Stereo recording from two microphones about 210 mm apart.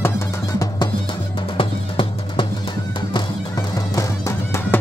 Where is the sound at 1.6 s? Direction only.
25° left (ahead or behind).